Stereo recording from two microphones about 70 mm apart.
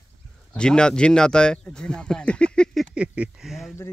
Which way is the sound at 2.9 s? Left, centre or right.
Centre.